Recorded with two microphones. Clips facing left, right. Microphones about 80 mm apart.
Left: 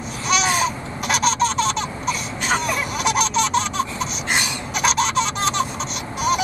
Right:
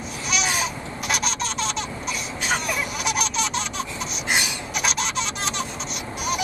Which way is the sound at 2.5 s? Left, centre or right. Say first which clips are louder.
Left 4 dB; centre.